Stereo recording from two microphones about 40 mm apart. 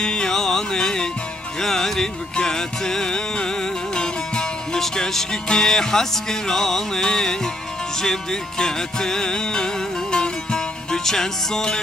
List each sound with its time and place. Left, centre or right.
0.0 s music: centre